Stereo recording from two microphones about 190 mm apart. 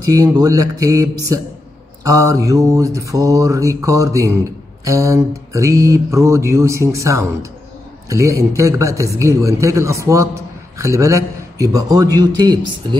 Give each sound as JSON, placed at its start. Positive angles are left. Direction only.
{"t": 0.4, "sound": "speech", "side_deg": -20}